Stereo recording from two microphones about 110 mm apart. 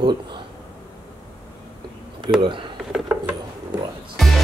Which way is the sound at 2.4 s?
50° right (ahead or behind).